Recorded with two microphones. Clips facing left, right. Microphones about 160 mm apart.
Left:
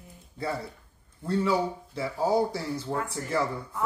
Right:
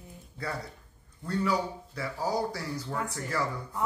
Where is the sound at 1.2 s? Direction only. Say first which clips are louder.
Left 3 dB; 25° left (ahead or behind).